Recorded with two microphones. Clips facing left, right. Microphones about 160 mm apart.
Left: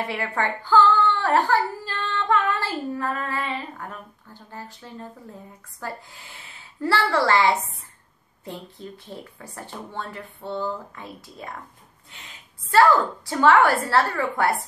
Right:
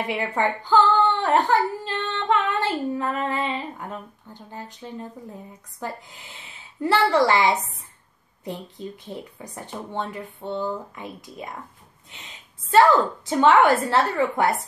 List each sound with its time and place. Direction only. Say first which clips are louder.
0.0 s speech: right 2 dB; 20° right (ahead or behind)
12.7 s speech: right 1 dB; 20° right (ahead or behind)